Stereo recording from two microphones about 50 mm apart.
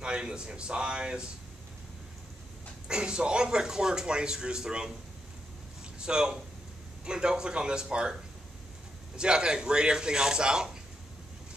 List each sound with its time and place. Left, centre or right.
0.0 s speech: centre
2.9 s speech: centre
5.9 s speech: centre